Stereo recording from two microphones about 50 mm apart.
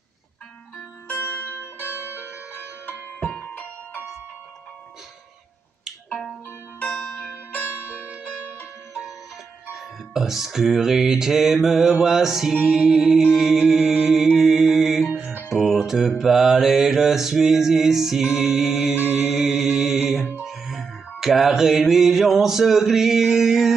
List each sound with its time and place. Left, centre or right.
0.7 s music: left
1.6 s music: left
2.5 s music: left
3.3 s music: left
6.8 s zither: left
7.6 s music: left
9.7 s speech: centre
12.6 s mantra: centre
14.3 s music: centre
16.2 s mantra: centre
20.4 s music: centre